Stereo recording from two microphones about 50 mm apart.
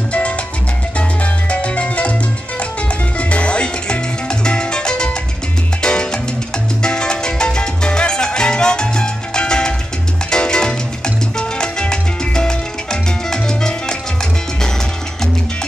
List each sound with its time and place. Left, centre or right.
0.9 s salsa music: left
3.2 s music: left
6.8 s salsa music: centre
10.3 s music: centre
11.3 s salsa music: centre